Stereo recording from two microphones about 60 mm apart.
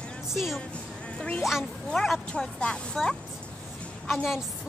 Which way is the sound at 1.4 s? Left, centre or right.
Centre.